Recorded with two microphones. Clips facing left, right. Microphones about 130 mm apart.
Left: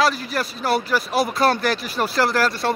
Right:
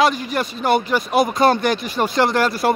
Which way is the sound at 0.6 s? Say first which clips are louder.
Right 3 dB; 5° left (ahead or behind).